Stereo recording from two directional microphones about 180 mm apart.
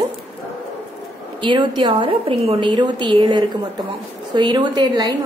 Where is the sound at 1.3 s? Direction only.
25° right (ahead or behind).